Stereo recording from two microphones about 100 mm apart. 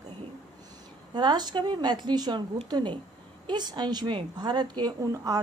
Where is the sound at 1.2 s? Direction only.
45° right (ahead or behind).